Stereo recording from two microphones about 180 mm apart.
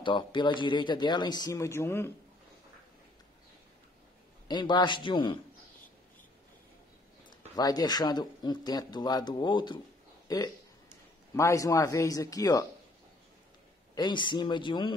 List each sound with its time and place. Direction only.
0.0 s speech: 25° left (ahead or behind)
4.5 s speech: 25° left (ahead or behind)
7.2 s speech: 20° left (ahead or behind)
13.9 s speech: 25° left (ahead or behind)